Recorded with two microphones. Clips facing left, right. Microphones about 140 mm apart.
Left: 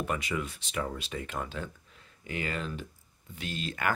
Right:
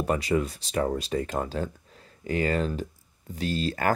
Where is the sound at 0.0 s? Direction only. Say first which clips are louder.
Right 7 dB; 35° right (ahead or behind).